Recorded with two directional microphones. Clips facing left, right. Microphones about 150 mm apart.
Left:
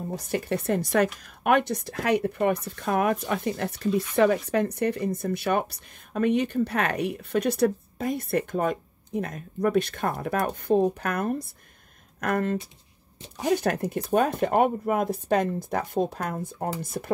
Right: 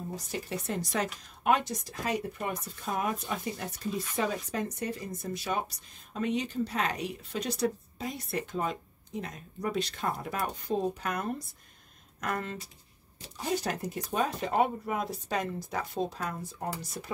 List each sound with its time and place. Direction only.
0.1 s speech: 60° left (ahead or behind)
13.4 s speech: 65° left (ahead or behind)